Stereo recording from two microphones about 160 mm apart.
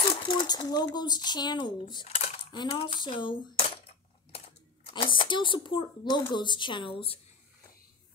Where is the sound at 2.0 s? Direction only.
40° left (ahead or behind).